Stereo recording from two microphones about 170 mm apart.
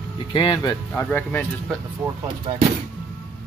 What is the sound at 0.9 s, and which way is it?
Speech, 10° left (ahead or behind).